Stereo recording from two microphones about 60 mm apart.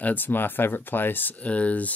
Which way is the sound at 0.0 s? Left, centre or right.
Left.